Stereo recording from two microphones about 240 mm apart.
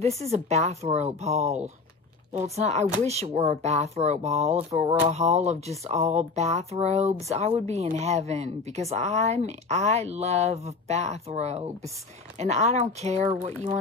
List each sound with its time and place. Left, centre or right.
0.3 s speech: right